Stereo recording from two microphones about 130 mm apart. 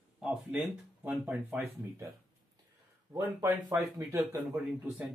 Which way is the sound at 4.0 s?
20° right (ahead or behind).